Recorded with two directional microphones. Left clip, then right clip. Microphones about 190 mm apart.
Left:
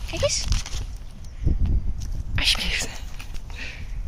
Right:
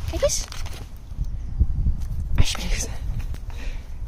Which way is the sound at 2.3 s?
15° right (ahead or behind).